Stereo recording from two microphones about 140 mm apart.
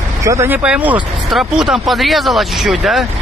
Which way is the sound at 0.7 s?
10° right (ahead or behind).